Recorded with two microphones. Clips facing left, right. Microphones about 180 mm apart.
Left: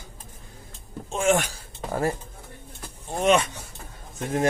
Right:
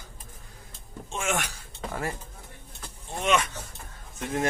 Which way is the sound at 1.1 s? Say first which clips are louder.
Left 8 dB; 35° left (ahead or behind).